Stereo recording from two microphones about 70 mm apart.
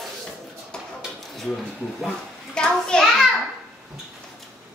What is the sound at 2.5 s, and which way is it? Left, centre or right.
Speech, centre.